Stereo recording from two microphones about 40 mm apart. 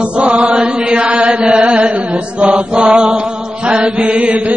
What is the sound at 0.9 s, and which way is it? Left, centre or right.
Chant, right.